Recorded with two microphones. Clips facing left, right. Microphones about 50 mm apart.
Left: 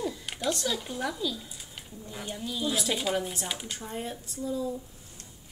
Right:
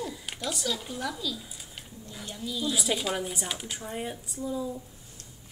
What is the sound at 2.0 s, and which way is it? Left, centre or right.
Speech, left.